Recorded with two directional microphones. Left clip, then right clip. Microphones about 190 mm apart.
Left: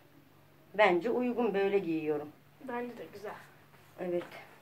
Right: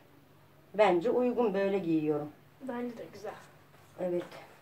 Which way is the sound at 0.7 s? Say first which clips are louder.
Right 1 dB; 10° right (ahead or behind).